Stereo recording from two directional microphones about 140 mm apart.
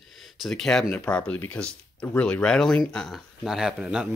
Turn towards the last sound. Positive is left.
turn(degrees=-5)  # may be behind; listen again after turning